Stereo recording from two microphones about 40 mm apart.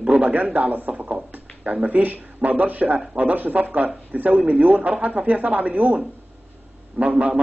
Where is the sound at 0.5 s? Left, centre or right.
Right.